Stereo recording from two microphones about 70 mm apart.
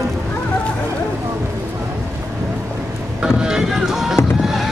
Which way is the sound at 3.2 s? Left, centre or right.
Centre.